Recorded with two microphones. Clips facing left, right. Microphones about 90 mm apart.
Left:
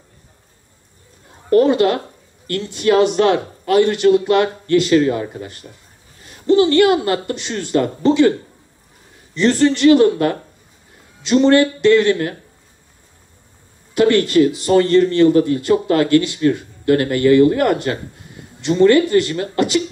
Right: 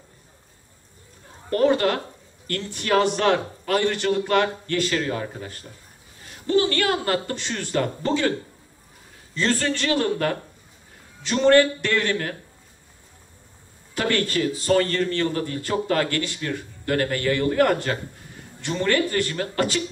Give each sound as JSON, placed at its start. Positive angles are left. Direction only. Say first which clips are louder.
{"t": 1.6, "sound": "a man's voice", "louder": "left 4 dB", "side_deg": 20}
{"t": 9.3, "sound": "a man's voice", "louder": "left 9 dB", "side_deg": 20}
{"t": 13.9, "sound": "a man's voice", "louder": "left 11 dB", "side_deg": 20}